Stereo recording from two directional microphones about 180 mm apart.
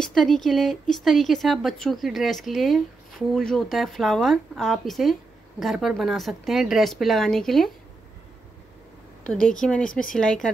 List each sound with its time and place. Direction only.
0.0 s speech: centre (ahead or behind)
9.2 s speech: 5° left (ahead or behind)